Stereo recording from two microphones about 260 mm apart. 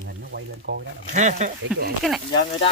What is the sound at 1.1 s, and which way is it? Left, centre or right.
Speech, right.